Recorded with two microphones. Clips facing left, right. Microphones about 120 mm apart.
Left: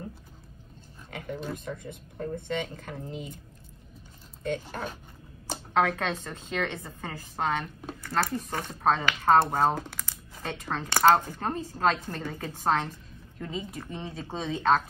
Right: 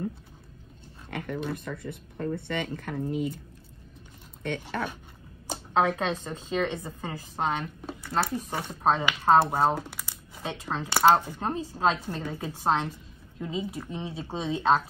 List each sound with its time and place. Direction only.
1.1 s speech: 55° right (ahead or behind)
4.4 s speech: 65° right (ahead or behind)
5.8 s a woman's voice: 25° right (ahead or behind)